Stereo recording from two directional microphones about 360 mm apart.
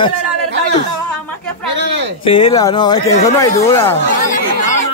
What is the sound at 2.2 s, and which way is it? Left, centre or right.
Speech, centre.